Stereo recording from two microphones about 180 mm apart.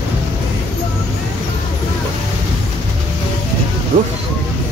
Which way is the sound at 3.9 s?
50° right (ahead or behind).